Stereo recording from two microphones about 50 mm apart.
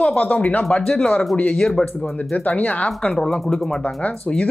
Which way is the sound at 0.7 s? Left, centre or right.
Centre.